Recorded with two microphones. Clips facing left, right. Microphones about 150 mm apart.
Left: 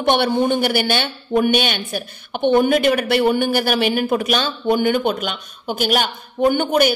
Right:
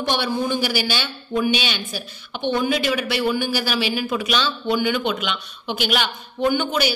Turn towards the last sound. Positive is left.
turn(degrees=50)  # may be behind; listen again after turning